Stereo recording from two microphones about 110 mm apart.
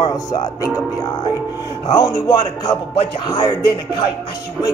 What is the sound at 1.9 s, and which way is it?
Music, 35° left (ahead or behind).